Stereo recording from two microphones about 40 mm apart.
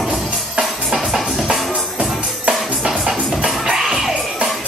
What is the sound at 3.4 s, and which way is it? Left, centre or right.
Music, centre.